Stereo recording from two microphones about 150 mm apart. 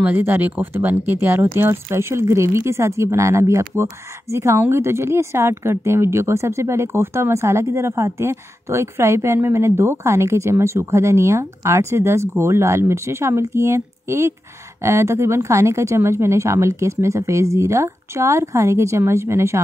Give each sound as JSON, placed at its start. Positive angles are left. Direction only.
{"t": 0.0, "sound": "a woman's voice", "side_deg": -10}